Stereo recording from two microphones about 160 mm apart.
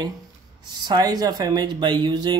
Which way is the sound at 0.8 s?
25° right (ahead or behind).